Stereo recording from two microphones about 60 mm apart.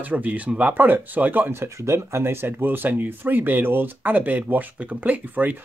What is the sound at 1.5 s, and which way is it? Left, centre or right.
Speech, right.